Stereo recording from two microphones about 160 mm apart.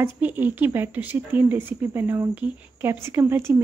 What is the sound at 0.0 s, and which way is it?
A woman's voice, 10° right (ahead or behind).